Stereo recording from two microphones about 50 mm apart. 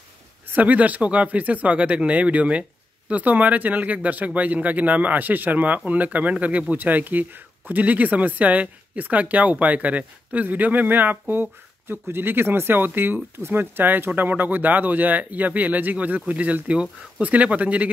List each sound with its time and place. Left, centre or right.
0.5 s speech: right